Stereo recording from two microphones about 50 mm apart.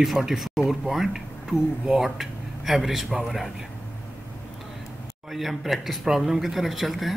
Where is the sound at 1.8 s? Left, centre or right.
Centre.